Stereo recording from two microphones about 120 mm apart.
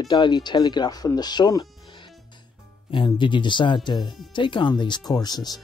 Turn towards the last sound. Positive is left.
turn(degrees=35)  # may be behind; listen again after turning